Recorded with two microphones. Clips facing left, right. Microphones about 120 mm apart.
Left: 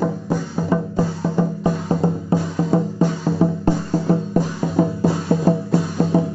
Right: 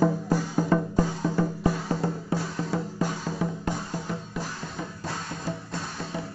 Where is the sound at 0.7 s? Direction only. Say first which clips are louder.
Left 5 dB; 10° left (ahead or behind); by 4.1 s 35° left (ahead or behind).